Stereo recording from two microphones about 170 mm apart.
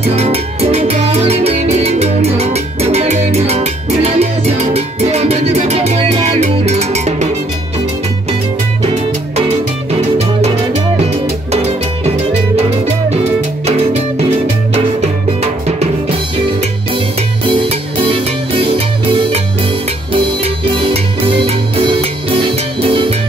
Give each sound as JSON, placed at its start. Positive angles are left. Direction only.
{"t": 0.1, "sound": "music", "side_deg": -40}
{"t": 14.7, "sound": "music", "side_deg": -40}
{"t": 17.5, "sound": "music", "side_deg": -30}
{"t": 20.1, "sound": "music", "side_deg": -30}